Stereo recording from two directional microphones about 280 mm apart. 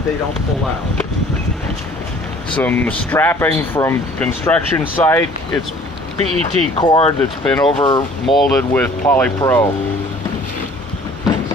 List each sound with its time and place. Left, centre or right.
2.6 s speech: centre
6.1 s speech: right
6.8 s speech: centre
7.4 s speech: centre